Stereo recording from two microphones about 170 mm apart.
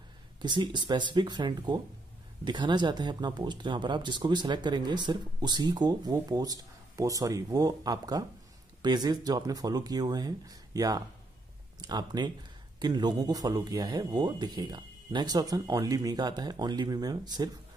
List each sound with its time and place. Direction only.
0.4 s speech: 25° right (ahead or behind)